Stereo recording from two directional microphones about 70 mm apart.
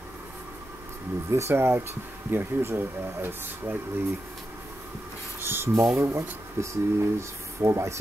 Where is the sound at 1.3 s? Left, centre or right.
Right.